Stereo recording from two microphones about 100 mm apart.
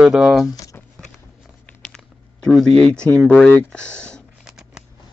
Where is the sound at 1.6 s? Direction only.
10° left (ahead or behind).